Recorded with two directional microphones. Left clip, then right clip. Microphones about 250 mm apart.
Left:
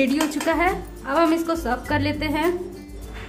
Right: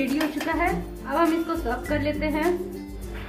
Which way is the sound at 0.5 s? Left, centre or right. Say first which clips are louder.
Left 4 dB; left.